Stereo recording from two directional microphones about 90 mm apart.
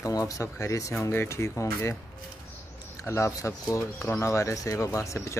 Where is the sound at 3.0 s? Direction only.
30° left (ahead or behind).